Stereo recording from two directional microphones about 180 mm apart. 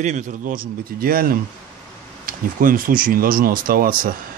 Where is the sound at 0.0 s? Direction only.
45° right (ahead or behind).